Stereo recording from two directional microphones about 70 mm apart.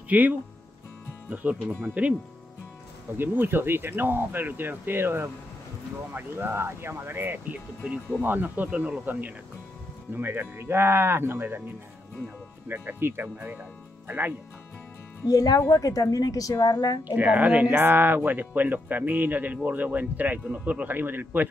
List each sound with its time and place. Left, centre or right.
0.1 s speech: right
3.2 s speech: right
7.5 s speech: centre
15.2 s a woman's voice: left
17.1 s speech: right